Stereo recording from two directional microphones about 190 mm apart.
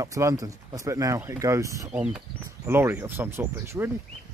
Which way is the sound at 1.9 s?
5° right (ahead or behind).